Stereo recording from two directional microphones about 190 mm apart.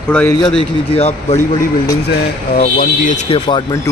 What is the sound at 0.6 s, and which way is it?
Speech, 30° left (ahead or behind).